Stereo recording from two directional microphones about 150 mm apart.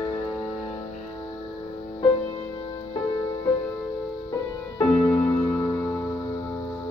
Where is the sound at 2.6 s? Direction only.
30° left (ahead or behind).